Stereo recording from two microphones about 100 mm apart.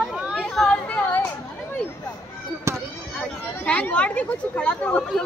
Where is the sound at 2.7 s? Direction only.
30° right (ahead or behind).